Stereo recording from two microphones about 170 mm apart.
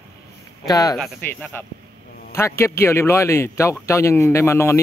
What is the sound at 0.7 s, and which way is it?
A man's voice, 20° left (ahead or behind).